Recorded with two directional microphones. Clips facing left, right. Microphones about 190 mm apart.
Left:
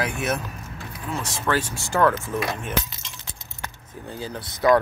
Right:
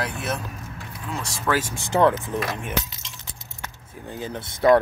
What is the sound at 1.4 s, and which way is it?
Speech, 10° right (ahead or behind).